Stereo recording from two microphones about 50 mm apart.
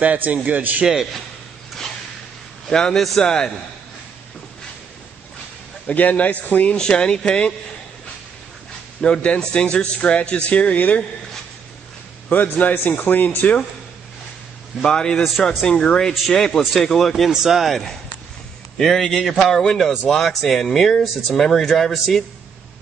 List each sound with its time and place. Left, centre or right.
0.0 s a man's voice: right
2.7 s a man's voice: centre
5.9 s speech: left
6.8 s a man's voice: centre
9.0 s a man's voice: left
12.3 s speech: left
14.8 s a man's voice: centre
15.2 s speech: centre
15.6 s a man's voice: centre